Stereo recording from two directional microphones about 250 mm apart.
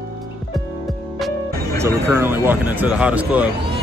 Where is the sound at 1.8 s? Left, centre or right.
Centre.